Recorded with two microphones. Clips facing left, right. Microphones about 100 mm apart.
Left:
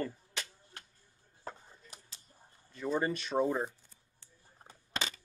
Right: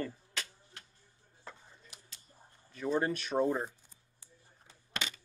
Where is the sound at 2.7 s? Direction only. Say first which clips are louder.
Right 1 dB; centre (ahead or behind).